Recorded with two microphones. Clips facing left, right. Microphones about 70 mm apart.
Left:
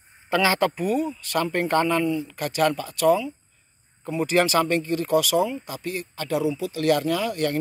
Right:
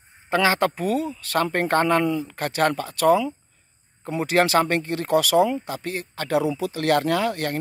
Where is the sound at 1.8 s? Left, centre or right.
Right.